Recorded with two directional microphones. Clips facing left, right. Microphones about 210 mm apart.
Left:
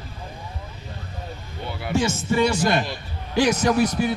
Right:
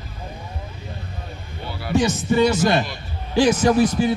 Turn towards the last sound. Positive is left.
turn(degrees=-30)  # may be behind; listen again after turning